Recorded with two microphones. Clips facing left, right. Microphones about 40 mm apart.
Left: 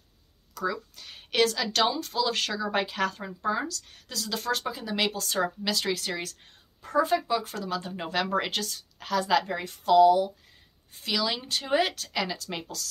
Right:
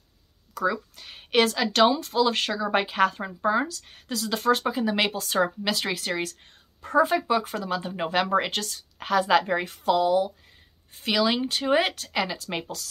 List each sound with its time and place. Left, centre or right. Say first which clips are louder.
0.6 s speech: right 4 dB; centre
8.5 s a woman's voice: right 1 dB; centre
9.2 s speech: right 3 dB; right